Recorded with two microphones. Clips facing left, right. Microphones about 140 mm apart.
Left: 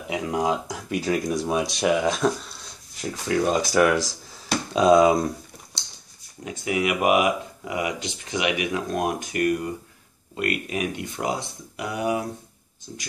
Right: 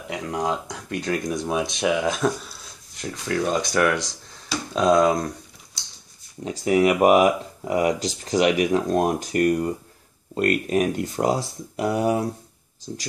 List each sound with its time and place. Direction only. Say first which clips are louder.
0.1 s speech: left 2 dB; 5° left (ahead or behind)
6.4 s speech: right 6 dB; 35° right (ahead or behind)